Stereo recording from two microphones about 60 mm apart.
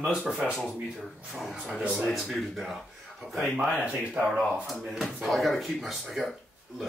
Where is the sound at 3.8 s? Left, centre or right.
Right.